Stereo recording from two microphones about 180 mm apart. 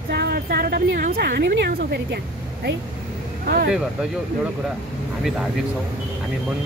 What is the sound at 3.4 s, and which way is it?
Speech, 60° right (ahead or behind).